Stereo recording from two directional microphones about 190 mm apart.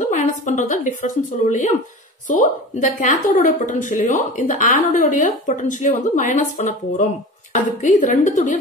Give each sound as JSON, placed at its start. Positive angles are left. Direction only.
{"t": 0.0, "sound": "a woman's voice", "side_deg": 40}